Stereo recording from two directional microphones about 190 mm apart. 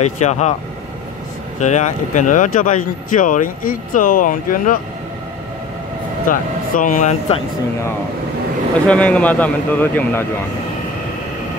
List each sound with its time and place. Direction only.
0.0 s speech: 35° left (ahead or behind)
1.6 s speech: 40° left (ahead or behind)
6.2 s speech: 45° left (ahead or behind)
8.8 s a man's voice: 5° left (ahead or behind)